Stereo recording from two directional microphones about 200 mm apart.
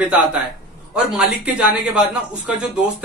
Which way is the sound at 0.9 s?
5° right (ahead or behind).